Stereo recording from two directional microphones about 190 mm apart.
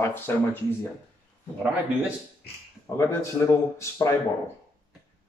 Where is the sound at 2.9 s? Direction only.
15° left (ahead or behind).